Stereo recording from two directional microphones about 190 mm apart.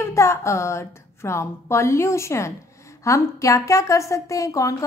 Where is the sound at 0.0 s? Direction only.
15° left (ahead or behind).